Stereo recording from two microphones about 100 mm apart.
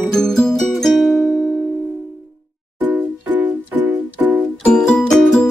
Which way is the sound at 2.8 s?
15° right (ahead or behind).